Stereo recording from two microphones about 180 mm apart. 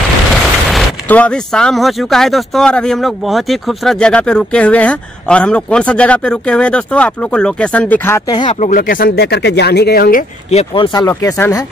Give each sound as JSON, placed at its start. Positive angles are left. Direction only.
{"t": 0.3, "sound": "speech", "side_deg": 0}
{"t": 8.5, "sound": "speech", "side_deg": 45}
{"t": 10.5, "sound": "speech", "side_deg": 30}
{"t": 11.1, "sound": "speech", "side_deg": 15}